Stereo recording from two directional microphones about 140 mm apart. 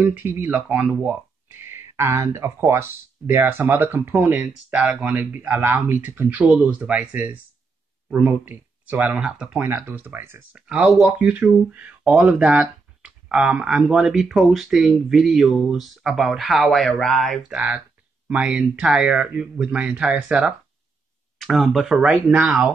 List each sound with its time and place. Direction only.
0.0 s speech: 15° right (ahead or behind)